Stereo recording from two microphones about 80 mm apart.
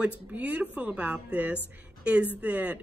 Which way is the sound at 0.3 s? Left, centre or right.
Right.